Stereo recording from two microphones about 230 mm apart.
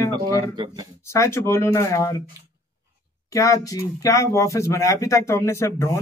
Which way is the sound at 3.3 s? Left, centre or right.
Centre.